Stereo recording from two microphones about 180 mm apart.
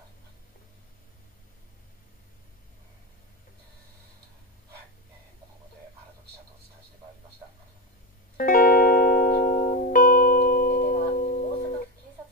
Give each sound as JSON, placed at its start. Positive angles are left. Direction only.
{"t": 8.4, "sound": "music", "side_deg": 50}